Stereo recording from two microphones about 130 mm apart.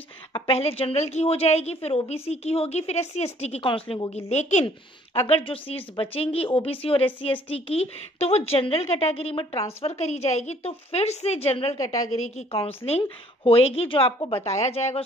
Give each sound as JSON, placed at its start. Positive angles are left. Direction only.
{"t": 0.5, "sound": "a woman's voice", "side_deg": 50}
{"t": 3.6, "sound": "a woman's voice", "side_deg": 45}
{"t": 4.6, "sound": "a woman's voice", "side_deg": 45}
{"t": 11.7, "sound": "a woman's voice", "side_deg": 30}
{"t": 12.4, "sound": "a woman's voice", "side_deg": 50}